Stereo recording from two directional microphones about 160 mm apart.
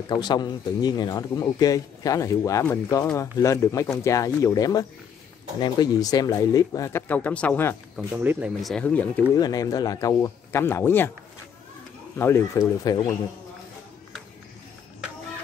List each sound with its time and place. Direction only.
0.1 s a man's voice: 25° left (ahead or behind); by 7.7 s 10° left (ahead or behind)
8.1 s speech: 10° right (ahead or behind)
8.5 s speech: 5° left (ahead or behind)
9.3 s a man's voice: 20° left (ahead or behind)
12.2 s speech: 15° left (ahead or behind)